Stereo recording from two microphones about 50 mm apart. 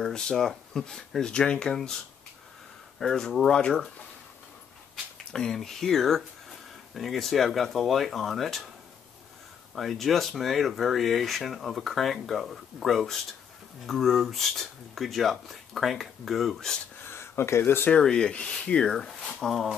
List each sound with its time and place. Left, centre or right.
0.0 s speech: centre
3.0 s speech: centre
5.3 s speech: centre
9.8 s speech: centre
17.0 s a sound: left
18.0 s speech: centre
18.9 s speech: centre